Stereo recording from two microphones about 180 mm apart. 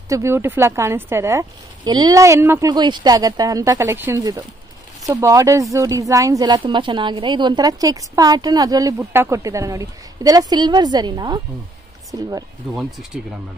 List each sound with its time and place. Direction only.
0.1 s a woman's voice: 15° right (ahead or behind)